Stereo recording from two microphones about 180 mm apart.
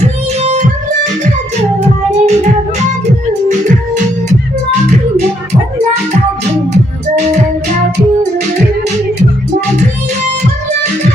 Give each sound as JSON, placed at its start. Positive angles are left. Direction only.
{"t": 0.0, "sound": "music", "side_deg": -40}
{"t": 3.4, "sound": "music", "side_deg": -45}